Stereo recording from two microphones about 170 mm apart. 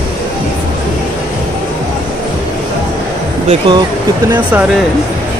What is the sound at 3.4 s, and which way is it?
Speech, 30° right (ahead or behind).